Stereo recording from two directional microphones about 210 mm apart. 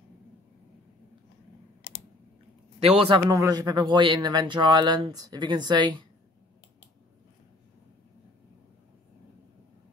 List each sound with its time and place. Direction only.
1.8 s typing: 50° left (ahead or behind)
2.8 s speech: 30° right (ahead or behind)
3.3 s speech: 15° right (ahead or behind)